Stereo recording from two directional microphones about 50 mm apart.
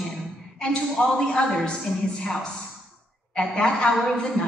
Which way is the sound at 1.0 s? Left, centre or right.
Centre.